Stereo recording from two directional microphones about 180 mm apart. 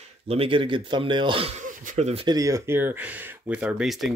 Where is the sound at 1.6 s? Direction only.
40° right (ahead or behind).